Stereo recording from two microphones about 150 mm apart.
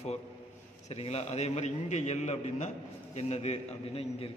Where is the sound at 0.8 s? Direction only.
45° left (ahead or behind).